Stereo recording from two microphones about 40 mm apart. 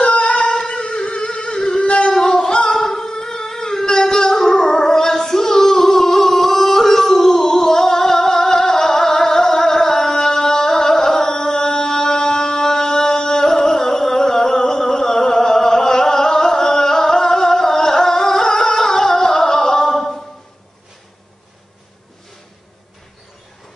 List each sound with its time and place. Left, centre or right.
0.0 s humming: left
0.3 s music: centre
2.7 s a sound: centre
5.0 s singing: centre
9.7 s music: centre